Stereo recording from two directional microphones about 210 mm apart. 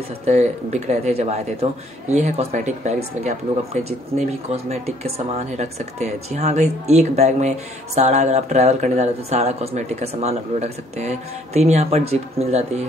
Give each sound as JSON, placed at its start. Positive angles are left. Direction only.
{"t": 0.2, "sound": "speech", "side_deg": -30}